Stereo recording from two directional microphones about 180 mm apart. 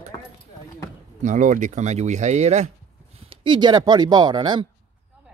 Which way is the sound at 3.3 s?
25° right (ahead or behind).